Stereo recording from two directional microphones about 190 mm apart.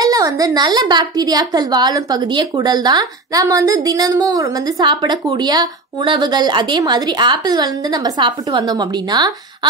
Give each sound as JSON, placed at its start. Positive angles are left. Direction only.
{"t": 0.0, "sound": "a woman's voice", "side_deg": -20}